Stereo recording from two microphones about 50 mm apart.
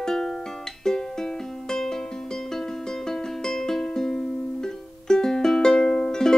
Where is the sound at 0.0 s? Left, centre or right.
Centre.